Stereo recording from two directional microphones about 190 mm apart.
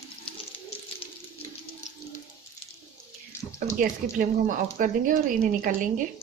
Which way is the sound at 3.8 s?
45° right (ahead or behind).